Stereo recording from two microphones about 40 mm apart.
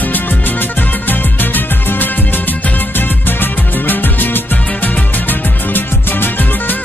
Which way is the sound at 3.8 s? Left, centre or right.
Left.